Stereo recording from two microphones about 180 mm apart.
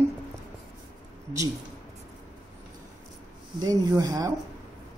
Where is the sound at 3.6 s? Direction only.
20° right (ahead or behind).